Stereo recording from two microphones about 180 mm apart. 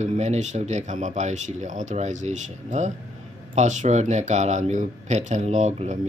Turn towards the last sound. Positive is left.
turn(degrees=-40)  # may be behind; listen again after turning